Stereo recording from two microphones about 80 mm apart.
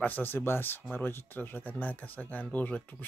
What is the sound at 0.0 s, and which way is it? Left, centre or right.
Speech, left.